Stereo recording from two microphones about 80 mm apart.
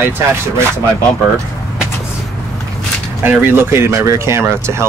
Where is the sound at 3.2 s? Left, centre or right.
Right.